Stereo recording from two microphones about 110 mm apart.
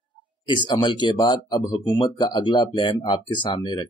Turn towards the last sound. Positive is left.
turn(degrees=45)  # may be behind; listen again after turning